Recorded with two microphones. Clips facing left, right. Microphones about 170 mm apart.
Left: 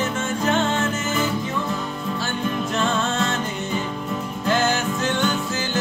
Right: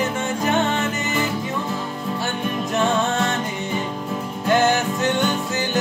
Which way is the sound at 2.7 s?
15° right (ahead or behind).